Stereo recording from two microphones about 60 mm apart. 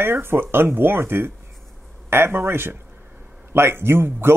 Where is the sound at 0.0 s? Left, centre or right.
Right.